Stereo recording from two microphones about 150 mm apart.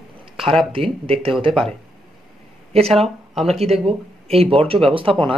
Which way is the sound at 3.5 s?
45° right (ahead or behind).